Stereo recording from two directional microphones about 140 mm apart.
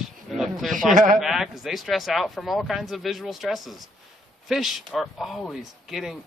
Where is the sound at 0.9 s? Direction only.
65° right (ahead or behind).